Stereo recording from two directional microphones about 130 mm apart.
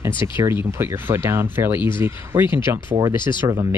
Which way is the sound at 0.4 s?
20° right (ahead or behind).